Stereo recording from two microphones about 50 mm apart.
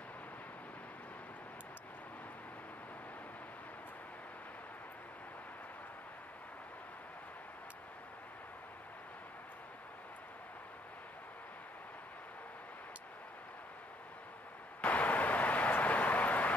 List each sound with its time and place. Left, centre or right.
14.8 s vehicle: left